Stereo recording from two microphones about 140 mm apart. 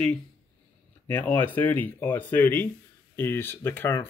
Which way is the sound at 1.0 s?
15° left (ahead or behind).